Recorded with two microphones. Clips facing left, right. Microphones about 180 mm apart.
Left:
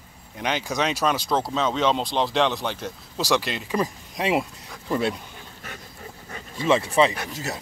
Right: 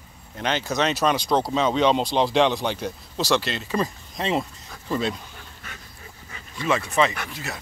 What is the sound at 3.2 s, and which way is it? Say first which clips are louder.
Speech: even; 10° left (ahead or behind).